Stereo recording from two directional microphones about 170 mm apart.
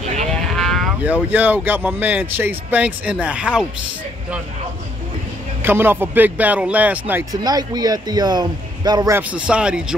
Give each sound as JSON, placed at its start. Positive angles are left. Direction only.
{"t": 0.6, "sound": "speech", "side_deg": 0}
{"t": 5.6, "sound": "speech", "side_deg": -15}
{"t": 7.4, "sound": "a man's voice", "side_deg": -25}
{"t": 9.3, "sound": "speech", "side_deg": -5}